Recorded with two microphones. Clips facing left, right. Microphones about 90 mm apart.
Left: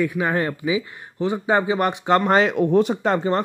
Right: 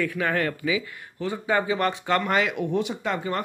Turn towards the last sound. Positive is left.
turn(degrees=35)  # may be behind; listen again after turning